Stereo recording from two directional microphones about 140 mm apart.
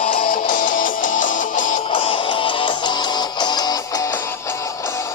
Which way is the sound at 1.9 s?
40° left (ahead or behind).